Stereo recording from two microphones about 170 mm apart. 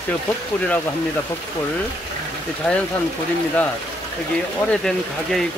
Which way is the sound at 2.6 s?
5° left (ahead or behind).